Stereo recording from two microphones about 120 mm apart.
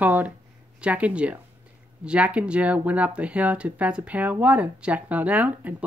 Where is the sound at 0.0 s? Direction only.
15° right (ahead or behind).